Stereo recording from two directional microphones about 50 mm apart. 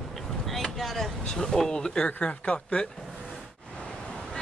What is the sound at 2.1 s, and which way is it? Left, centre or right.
Speech, left.